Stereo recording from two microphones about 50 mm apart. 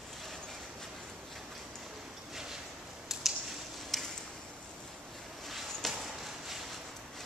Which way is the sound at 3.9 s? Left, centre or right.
Centre.